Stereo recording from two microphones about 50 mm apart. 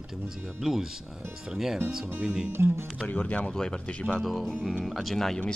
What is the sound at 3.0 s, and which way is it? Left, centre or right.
Speech, left.